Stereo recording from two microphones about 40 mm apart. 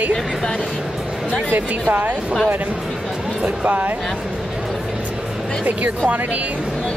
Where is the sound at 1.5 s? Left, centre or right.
Right.